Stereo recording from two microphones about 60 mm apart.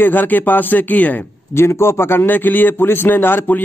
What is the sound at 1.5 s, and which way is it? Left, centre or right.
A man's voice, left.